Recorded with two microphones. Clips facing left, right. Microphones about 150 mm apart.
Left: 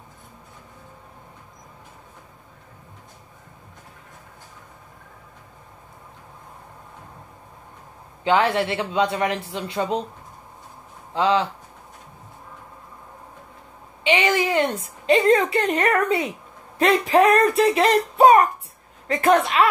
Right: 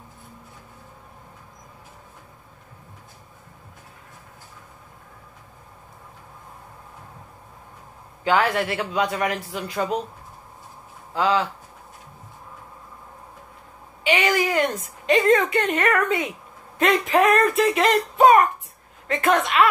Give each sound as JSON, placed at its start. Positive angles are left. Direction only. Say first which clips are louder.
{"t": 8.2, "sound": "a man's voice", "louder": "left 1 dB", "side_deg": 25}
{"t": 11.1, "sound": "a man's voice", "louder": "left 1 dB", "side_deg": 25}
{"t": 14.0, "sound": "a woman's voice", "louder": "left 1 dB", "side_deg": 25}